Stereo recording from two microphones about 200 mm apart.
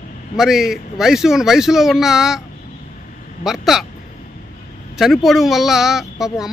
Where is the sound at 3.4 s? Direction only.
Centre (ahead or behind).